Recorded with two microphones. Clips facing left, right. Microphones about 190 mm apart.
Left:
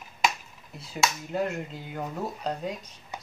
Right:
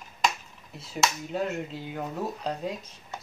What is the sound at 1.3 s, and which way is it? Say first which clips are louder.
Speech: even; centre (ahead or behind).